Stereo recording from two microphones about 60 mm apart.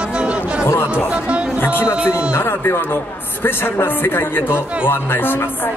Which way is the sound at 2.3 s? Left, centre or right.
Left.